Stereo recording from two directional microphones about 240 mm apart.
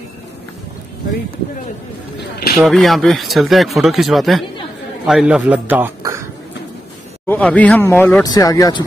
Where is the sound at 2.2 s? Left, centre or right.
Left.